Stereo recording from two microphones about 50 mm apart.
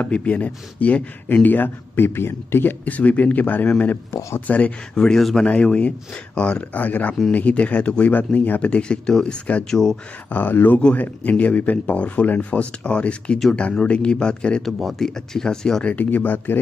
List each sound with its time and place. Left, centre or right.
0.0 s speech: left
2.0 s a man's voice: left
2.8 s speech: left
4.1 s speech: left
4.5 s speech: left
4.9 s speech: centre
5.5 s speech: left
6.7 s speech: left
9.7 s speech: centre
10.3 s speech: left; by 14.6 s centre
14.6 s speech: centre
15.8 s speech: left